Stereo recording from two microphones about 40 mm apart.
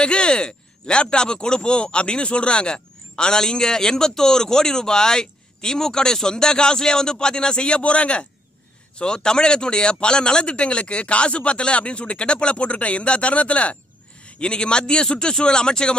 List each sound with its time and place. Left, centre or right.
0.0 s speech: left